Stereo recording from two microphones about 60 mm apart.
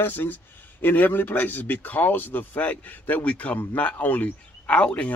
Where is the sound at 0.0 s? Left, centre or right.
Left.